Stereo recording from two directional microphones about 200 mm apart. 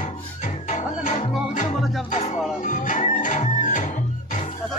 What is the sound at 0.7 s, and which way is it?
Music, 40° left (ahead or behind).